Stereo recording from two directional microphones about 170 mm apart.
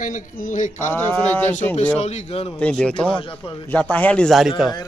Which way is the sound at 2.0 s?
40° left (ahead or behind).